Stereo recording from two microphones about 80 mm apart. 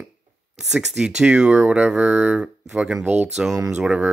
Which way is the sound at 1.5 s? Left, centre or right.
Right.